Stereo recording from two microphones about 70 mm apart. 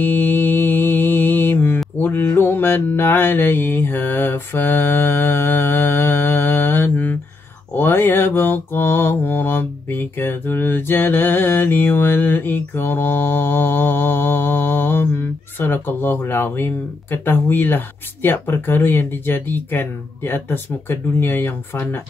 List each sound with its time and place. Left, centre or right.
0.0 s mantra: left